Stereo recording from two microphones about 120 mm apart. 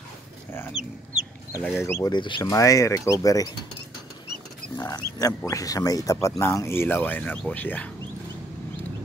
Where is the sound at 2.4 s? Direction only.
25° left (ahead or behind).